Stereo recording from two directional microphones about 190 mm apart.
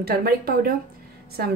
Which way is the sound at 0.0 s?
55° right (ahead or behind).